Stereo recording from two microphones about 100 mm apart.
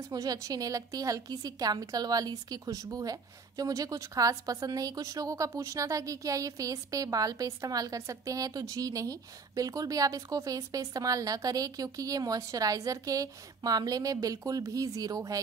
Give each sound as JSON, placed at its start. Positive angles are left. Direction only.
{"t": 0.1, "sound": "a woman's voice", "side_deg": -40}